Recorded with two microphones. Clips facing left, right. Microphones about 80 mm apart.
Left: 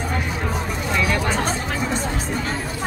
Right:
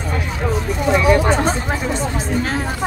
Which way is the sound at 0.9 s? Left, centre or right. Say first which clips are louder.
Right 7 dB; right.